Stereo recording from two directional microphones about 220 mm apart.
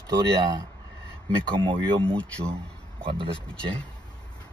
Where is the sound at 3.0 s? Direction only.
25° right (ahead or behind).